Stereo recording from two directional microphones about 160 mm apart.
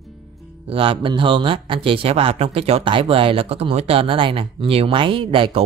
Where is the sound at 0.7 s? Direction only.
35° right (ahead or behind).